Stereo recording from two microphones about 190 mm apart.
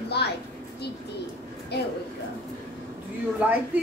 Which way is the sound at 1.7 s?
60° left (ahead or behind).